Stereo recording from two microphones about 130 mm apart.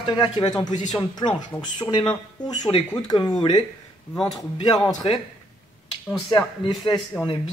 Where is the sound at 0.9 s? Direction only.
35° left (ahead or behind).